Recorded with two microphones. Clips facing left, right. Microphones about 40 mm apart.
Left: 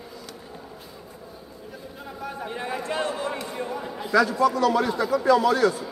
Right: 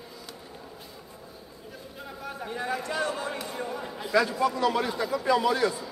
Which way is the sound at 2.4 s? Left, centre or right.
Left.